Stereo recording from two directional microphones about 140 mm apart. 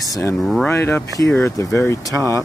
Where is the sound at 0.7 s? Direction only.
20° left (ahead or behind).